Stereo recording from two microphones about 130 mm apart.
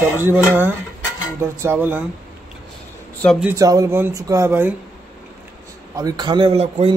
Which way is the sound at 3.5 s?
25° right (ahead or behind).